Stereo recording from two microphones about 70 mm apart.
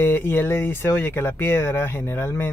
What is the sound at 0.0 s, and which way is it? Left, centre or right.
Speech, left.